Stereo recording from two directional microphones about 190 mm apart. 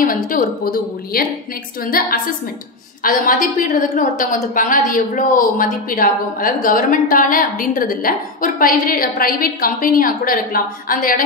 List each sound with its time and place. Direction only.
0.0 s a woman's voice: 45° left (ahead or behind)